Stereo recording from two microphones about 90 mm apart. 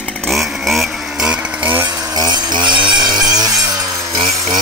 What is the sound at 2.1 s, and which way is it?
Chainsaw, 50° right (ahead or behind).